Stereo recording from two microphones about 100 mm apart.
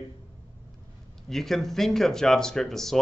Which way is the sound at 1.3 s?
Centre (ahead or behind).